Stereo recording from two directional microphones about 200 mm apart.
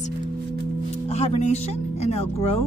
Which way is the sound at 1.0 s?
30° left (ahead or behind).